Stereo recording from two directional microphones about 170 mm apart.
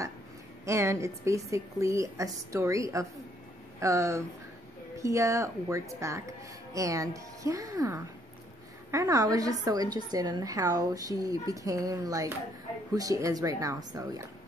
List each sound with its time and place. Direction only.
0.7 s a woman's voice: 15° right (ahead or behind)